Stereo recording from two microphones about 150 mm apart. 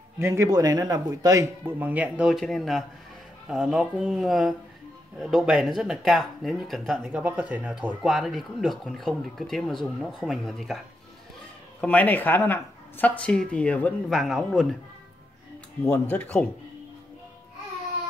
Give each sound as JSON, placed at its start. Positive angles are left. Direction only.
{"t": 0.2, "sound": "speech", "side_deg": -20}
{"t": 11.8, "sound": "speech", "side_deg": 10}
{"t": 15.8, "sound": "speech", "side_deg": 15}